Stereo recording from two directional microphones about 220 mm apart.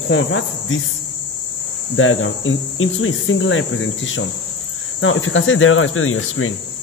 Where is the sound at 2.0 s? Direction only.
65° left (ahead or behind).